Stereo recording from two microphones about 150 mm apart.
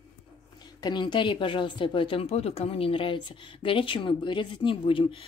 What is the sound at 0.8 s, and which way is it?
Speech, 30° left (ahead or behind).